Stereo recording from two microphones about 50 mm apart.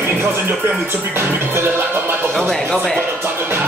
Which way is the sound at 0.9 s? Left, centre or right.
Right.